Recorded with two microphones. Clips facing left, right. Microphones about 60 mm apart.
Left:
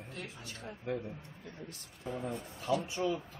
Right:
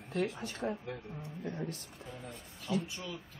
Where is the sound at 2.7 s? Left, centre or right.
Left.